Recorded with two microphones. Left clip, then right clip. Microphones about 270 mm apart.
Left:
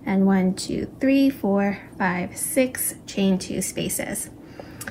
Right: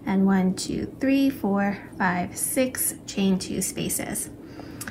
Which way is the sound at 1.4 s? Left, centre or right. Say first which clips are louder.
Left 3 dB; right.